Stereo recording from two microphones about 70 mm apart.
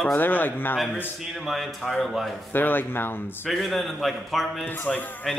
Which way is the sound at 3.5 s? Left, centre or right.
Centre.